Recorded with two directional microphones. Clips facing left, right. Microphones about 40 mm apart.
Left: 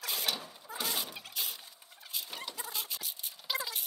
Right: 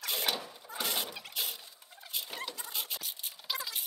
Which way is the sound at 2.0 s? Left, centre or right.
Right.